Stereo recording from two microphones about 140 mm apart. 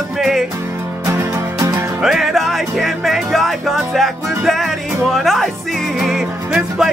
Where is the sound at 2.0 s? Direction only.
5° right (ahead or behind).